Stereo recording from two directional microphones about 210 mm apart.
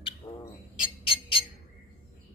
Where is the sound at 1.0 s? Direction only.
25° left (ahead or behind).